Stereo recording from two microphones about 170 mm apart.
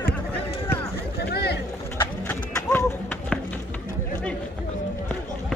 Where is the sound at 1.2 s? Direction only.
70° left (ahead or behind).